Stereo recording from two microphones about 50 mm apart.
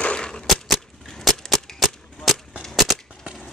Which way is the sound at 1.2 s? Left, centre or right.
Centre.